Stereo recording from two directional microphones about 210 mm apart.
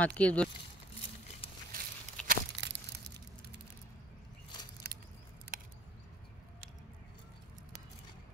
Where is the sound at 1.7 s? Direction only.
40° right (ahead or behind).